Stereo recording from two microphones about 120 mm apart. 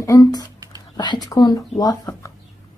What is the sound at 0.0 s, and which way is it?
Speech, 30° left (ahead or behind).